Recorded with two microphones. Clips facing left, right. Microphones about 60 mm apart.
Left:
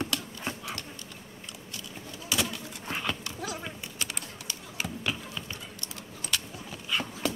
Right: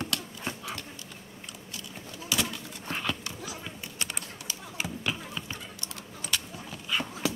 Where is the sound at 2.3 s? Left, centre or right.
Centre.